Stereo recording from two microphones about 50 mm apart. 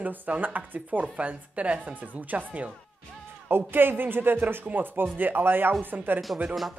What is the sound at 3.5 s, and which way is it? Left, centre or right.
A woman's voice, right.